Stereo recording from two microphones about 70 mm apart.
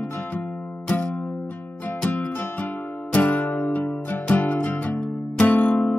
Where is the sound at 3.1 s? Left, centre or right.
Left.